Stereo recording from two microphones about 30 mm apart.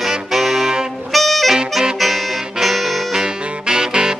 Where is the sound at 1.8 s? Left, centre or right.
Centre.